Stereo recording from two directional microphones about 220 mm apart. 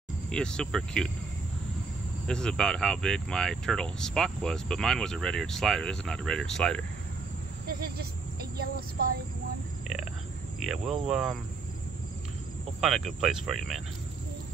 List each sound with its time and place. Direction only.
0.3 s speech: 5° left (ahead or behind)
2.2 s speech: 5° left (ahead or behind)
7.6 s a sound: 45° right (ahead or behind)
11.1 s speech: 5° right (ahead or behind)
12.8 s speech: centre (ahead or behind)